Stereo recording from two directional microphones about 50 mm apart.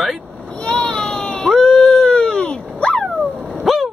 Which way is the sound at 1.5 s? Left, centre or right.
Centre.